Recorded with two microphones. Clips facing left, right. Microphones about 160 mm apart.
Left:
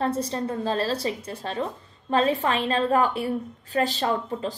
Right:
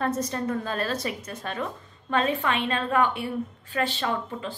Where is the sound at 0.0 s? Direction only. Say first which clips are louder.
Left 1 dB; 30° left (ahead or behind).